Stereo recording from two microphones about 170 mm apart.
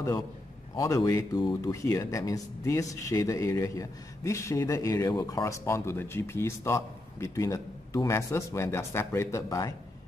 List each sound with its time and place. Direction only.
0.7 s speech: 20° left (ahead or behind)